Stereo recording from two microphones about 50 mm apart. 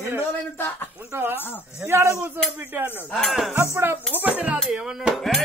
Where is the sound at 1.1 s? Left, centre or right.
Right.